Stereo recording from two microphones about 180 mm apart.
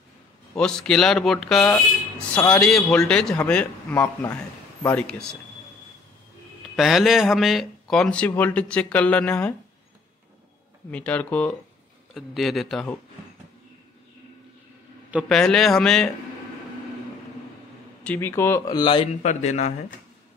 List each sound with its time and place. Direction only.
0.6 s a man's voice: 5° left (ahead or behind)
6.8 s speech: centre (ahead or behind)
10.9 s a man's voice: 10° left (ahead or behind)
15.0 s a man's voice: 5° right (ahead or behind)
18.0 s speech: 10° left (ahead or behind)
19.2 s speech: 40° left (ahead or behind)